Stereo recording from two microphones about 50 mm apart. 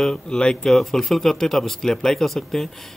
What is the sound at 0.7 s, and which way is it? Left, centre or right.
A man's voice, centre.